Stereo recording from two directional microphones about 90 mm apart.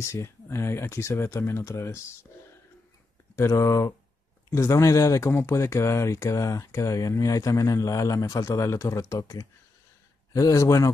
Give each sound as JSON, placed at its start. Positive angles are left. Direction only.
{"t": 0.0, "sound": "speech", "side_deg": 30}
{"t": 3.3, "sound": "speech", "side_deg": 35}